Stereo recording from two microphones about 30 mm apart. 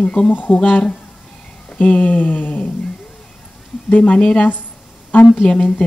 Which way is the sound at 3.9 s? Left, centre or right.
Left.